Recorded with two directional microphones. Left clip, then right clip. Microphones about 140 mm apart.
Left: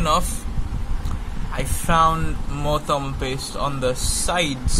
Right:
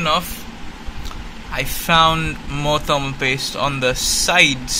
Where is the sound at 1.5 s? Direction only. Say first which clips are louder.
Right 5 dB; centre (ahead or behind).